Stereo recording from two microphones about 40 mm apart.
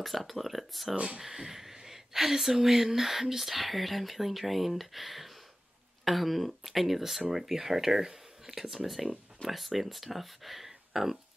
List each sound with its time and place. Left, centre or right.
0.0 s speech: centre
0.9 s speech: right
1.2 s speech: centre